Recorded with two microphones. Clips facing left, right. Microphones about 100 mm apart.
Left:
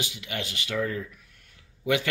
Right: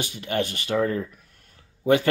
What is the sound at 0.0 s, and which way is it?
Speech, 45° right (ahead or behind).